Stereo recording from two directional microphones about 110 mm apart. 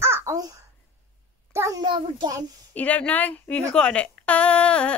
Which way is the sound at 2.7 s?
10° left (ahead or behind).